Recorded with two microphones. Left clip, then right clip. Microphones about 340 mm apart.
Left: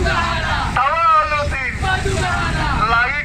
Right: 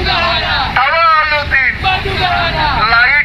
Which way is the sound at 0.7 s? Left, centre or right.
Centre.